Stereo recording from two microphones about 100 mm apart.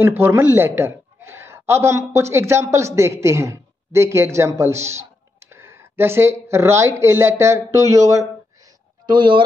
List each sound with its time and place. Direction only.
0.0 s a woman's voice: 25° right (ahead or behind)
9.0 s speech: 50° right (ahead or behind)